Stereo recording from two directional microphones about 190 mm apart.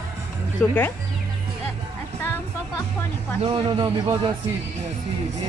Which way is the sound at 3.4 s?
25° right (ahead or behind).